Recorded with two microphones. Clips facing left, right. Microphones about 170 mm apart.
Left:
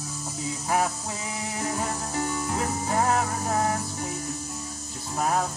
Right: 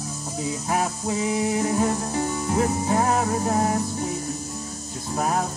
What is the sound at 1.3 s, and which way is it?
Music, 20° right (ahead or behind).